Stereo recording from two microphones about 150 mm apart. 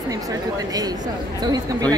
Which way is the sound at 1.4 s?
25° right (ahead or behind).